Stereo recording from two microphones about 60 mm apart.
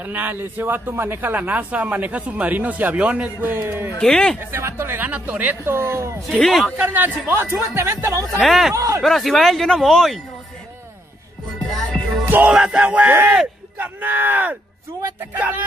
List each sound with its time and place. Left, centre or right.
0.0 s a man's voice: right
3.3 s speech: right
4.0 s speech: centre
4.4 s speech: right
4.9 s a man's voice: right
5.6 s speech: right
6.2 s speech: centre
6.9 s speech: right
8.4 s speech: centre
8.7 s speech: right
9.0 s speech: centre
11.5 s music: centre
12.4 s music: centre
12.7 s a man's voice: right